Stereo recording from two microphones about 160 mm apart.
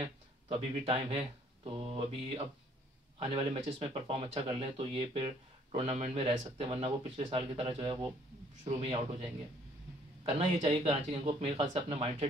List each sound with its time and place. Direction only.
0.0 s speech: 35° right (ahead or behind)